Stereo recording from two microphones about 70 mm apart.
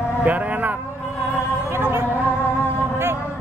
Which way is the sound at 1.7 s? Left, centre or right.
Right.